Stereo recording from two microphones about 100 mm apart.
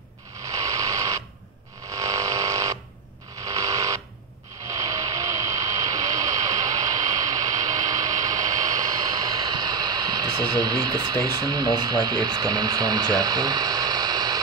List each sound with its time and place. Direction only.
0.5 s radio: 35° right (ahead or behind)
1.9 s hum: 35° right (ahead or behind)
3.4 s a sound: 35° right (ahead or behind)
4.7 s vehicle: 35° right (ahead or behind)
9.4 s speech: 45° right (ahead or behind)